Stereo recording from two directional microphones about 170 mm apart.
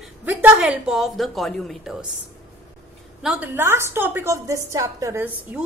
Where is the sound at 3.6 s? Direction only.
15° right (ahead or behind).